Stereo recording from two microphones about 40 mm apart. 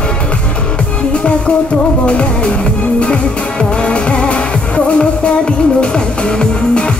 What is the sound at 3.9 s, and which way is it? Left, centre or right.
Music, left.